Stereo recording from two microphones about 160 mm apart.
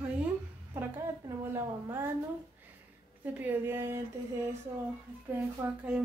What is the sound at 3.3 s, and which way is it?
A woman's voice, 10° right (ahead or behind).